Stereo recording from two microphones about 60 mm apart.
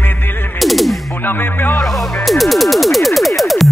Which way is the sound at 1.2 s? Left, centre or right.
Left.